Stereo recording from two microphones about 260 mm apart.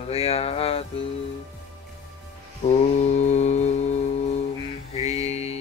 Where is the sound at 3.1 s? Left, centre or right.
Left.